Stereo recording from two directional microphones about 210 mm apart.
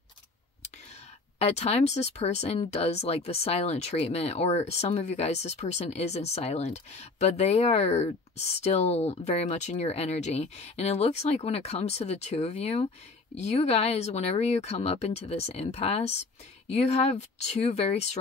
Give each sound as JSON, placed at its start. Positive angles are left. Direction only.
{"t": 1.4, "sound": "speech", "side_deg": 30}